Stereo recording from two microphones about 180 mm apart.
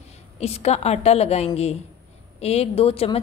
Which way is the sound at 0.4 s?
35° left (ahead or behind).